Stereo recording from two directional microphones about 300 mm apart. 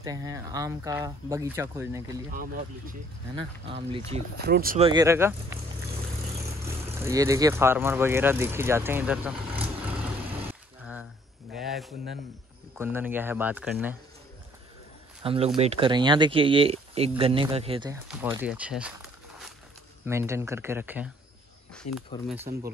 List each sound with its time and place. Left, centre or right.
0.0 s speech: centre
4.4 s speech: right; by 5.6 s centre
7.0 s speech: centre
10.5 s a sound: centre
12.7 s speech: centre
15.2 s speech: centre
21.8 s speech: left